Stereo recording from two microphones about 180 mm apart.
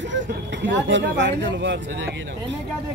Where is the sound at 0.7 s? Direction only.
90° right.